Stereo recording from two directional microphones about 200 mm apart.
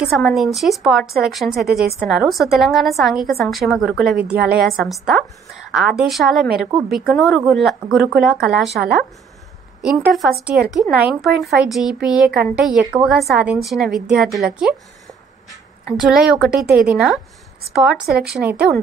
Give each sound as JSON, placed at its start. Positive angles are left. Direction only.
{"t": 0.0, "sound": "speech", "side_deg": 0}
{"t": 1.7, "sound": "a woman's voice", "side_deg": -50}
{"t": 2.0, "sound": "speech", "side_deg": 0}
{"t": 16.0, "sound": "speech", "side_deg": -5}
{"t": 18.2, "sound": "speech", "side_deg": -5}